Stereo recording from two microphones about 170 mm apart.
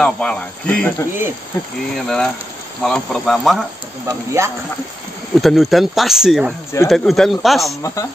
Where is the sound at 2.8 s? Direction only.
Centre (ahead or behind).